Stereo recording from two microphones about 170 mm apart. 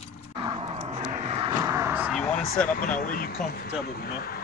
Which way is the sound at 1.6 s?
20° right (ahead or behind).